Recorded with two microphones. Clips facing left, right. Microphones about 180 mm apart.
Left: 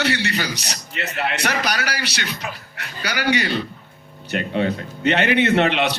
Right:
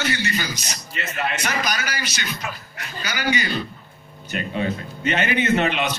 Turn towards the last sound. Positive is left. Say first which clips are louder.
# left 3 dB
turn(degrees=70)  # may be behind; listen again after turning